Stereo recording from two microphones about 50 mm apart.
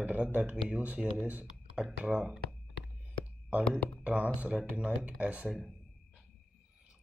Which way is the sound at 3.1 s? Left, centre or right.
Right.